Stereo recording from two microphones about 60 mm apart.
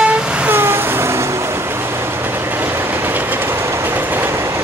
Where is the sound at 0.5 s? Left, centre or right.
Right.